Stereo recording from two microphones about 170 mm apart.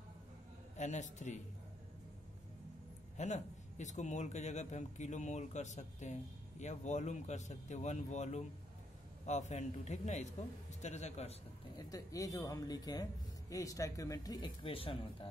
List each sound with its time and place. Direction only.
0.7 s a man's voice: 45° left (ahead or behind)
3.2 s a man's voice: 45° left (ahead or behind)
11.7 s speech: 20° left (ahead or behind)